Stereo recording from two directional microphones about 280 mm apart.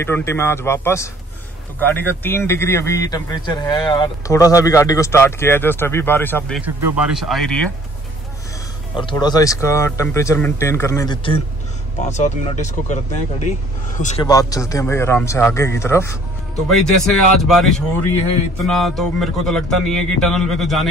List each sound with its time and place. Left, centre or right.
0.0 s a man's voice: centre
6.6 s a man's voice: centre
8.9 s a man's voice: centre
12.1 s speech: left
14.2 s a man's voice: centre